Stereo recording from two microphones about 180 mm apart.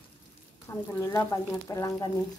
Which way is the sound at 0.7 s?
15° left (ahead or behind).